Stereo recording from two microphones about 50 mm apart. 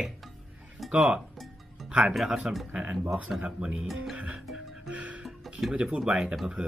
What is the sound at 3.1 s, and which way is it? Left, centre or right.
Speech, centre.